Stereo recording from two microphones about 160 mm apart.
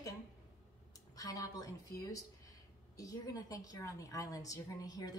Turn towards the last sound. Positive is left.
turn(degrees=20)  # may be behind; listen again after turning